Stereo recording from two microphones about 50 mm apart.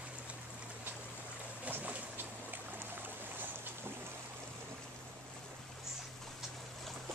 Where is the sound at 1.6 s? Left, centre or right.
Right.